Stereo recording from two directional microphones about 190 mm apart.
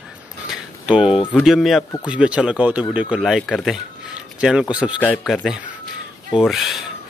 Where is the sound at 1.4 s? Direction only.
Centre (ahead or behind).